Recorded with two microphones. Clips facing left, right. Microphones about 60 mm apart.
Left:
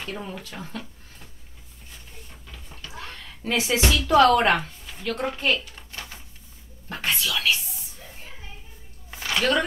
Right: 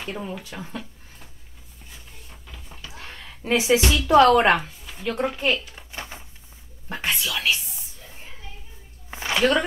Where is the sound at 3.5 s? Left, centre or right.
Centre.